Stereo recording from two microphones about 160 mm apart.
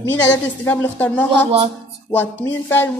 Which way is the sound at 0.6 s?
10° left (ahead or behind).